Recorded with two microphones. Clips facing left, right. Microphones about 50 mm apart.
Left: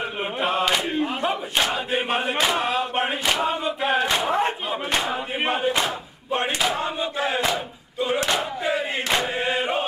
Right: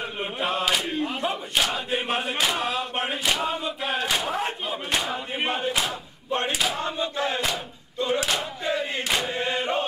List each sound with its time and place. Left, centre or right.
0.2 s battle cry: centre
8.4 s crowd: centre
9.3 s chant: centre